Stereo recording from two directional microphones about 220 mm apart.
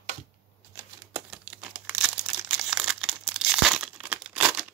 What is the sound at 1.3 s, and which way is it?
Crumpling, 5° right (ahead or behind).